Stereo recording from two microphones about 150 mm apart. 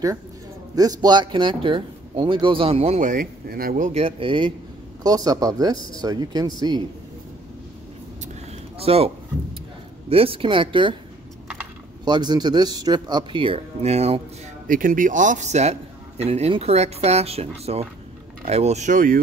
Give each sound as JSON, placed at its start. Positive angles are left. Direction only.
{"t": 0.7, "sound": "speech", "side_deg": -25}
{"t": 3.9, "sound": "speech", "side_deg": -35}
{"t": 8.7, "sound": "speech", "side_deg": -40}
{"t": 12.0, "sound": "speech", "side_deg": -30}
{"t": 14.7, "sound": "a man's voice", "side_deg": -65}